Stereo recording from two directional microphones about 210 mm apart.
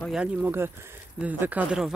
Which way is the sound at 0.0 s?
5° right (ahead or behind).